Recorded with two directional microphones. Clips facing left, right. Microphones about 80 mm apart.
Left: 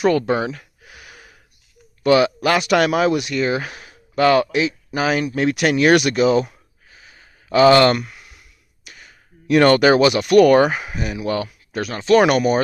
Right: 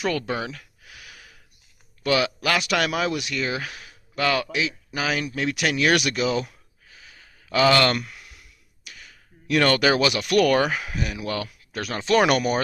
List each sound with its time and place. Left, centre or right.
0.0 s a sound: left
2.0 s speech: left; by 11.9 s centre
11.9 s speech: centre